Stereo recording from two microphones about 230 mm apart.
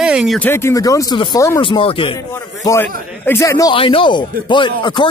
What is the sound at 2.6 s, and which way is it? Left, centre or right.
A man's voice, centre.